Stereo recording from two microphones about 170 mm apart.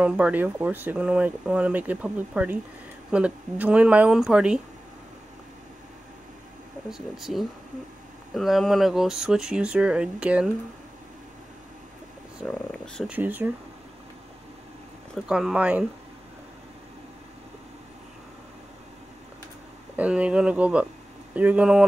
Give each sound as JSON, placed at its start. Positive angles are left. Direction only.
{"t": 0.0, "sound": "speech", "side_deg": -10}
{"t": 6.9, "sound": "speech", "side_deg": 0}
{"t": 12.4, "sound": "speech", "side_deg": 5}
{"t": 13.1, "sound": "speech", "side_deg": -10}
{"t": 15.2, "sound": "speech", "side_deg": -5}
{"t": 20.0, "sound": "speech", "side_deg": -5}